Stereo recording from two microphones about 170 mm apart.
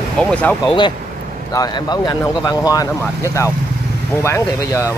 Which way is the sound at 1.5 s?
20° left (ahead or behind).